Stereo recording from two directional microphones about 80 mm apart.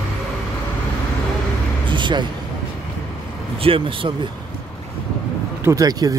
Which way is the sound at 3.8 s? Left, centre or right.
Right.